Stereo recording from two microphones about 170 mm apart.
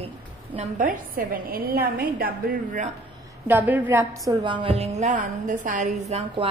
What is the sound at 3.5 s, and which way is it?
Speech, 10° right (ahead or behind).